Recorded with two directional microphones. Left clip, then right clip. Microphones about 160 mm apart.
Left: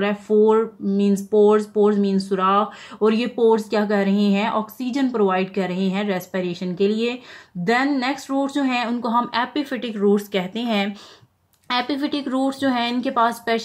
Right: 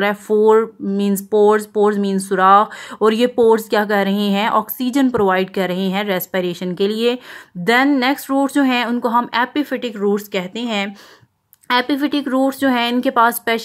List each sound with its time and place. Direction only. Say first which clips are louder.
0.0 s speech: right 3 dB; 30° right (ahead or behind)